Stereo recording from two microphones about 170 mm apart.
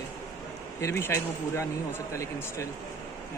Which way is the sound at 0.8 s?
15° left (ahead or behind).